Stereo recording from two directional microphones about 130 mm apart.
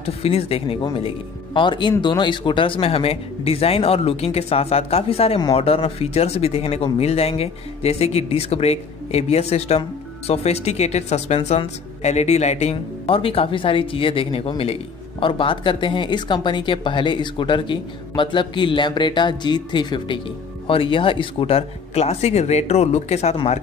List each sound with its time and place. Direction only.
0.0 s speech: 50° left (ahead or behind)